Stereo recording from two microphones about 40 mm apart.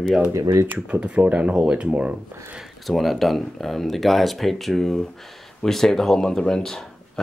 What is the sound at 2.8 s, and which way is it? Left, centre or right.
Speech, centre.